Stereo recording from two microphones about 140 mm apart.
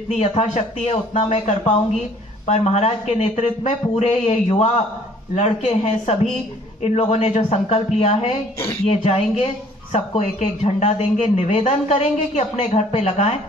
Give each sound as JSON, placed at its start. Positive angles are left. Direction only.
{"t": 0.1, "sound": "speech", "side_deg": 50}
{"t": 6.8, "sound": "speech", "side_deg": 55}